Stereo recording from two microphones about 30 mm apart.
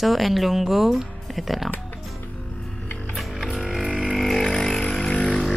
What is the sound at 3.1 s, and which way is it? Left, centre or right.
Music, centre.